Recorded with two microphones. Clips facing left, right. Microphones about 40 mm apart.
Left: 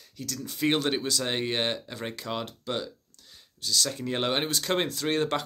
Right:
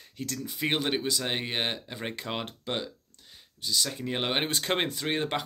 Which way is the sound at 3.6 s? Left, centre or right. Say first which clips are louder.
Left 1 dB; centre.